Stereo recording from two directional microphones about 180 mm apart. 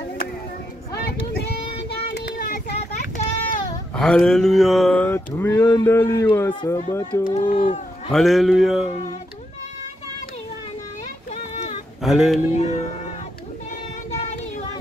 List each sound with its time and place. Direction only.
2.1 s vehicle: 60° left (ahead or behind)
3.9 s speech: 5° left (ahead or behind)
7.2 s speech: 40° left (ahead or behind)
8.1 s speech: centre (ahead or behind)
12.0 s speech: centre (ahead or behind)
12.5 s speech: 40° left (ahead or behind)